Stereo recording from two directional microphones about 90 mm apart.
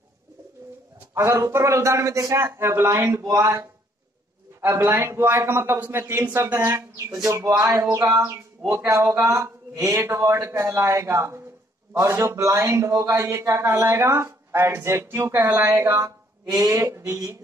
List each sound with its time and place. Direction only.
1.1 s a man's voice: 30° right (ahead or behind)
7.2 s a man's voice: 35° right (ahead or behind)